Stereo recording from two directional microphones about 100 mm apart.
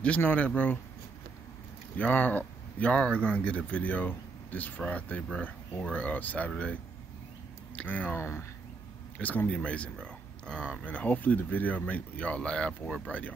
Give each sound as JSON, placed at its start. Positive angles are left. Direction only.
{"t": 0.0, "sound": "speech", "side_deg": 15}
{"t": 2.0, "sound": "speech", "side_deg": 15}
{"t": 8.2, "sound": "speech", "side_deg": 25}
{"t": 9.2, "sound": "speech", "side_deg": 15}